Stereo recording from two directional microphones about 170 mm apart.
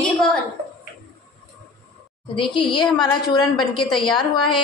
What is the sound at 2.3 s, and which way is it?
A woman's voice, 30° left (ahead or behind).